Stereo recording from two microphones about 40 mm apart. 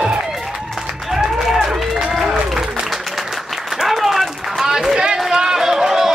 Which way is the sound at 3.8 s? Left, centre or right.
Centre.